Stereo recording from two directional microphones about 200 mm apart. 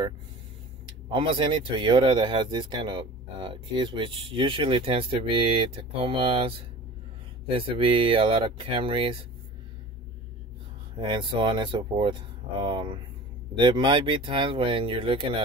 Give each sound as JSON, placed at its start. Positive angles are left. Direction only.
{"t": 1.1, "sound": "speech", "side_deg": -25}
{"t": 11.0, "sound": "speech", "side_deg": -25}